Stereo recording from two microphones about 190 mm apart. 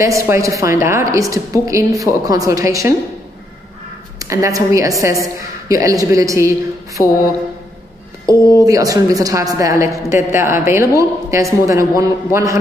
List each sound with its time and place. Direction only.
0.0 s a woman's voice: 15° right (ahead or behind)
4.2 s a woman's voice: 15° right (ahead or behind)
8.3 s a woman's voice: 20° right (ahead or behind)